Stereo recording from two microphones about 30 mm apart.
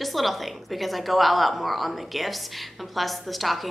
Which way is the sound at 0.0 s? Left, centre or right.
Centre.